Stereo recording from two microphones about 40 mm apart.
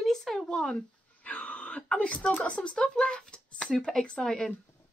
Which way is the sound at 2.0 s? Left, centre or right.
Left.